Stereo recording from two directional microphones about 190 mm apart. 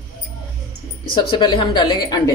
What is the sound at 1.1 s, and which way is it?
Speech, 25° left (ahead or behind).